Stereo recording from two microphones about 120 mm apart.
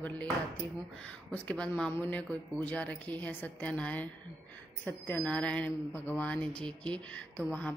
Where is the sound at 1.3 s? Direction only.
10° left (ahead or behind).